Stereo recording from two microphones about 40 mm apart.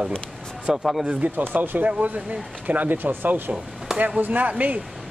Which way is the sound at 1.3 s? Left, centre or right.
Right.